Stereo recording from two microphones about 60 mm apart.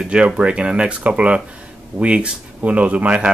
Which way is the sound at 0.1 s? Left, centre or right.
Centre.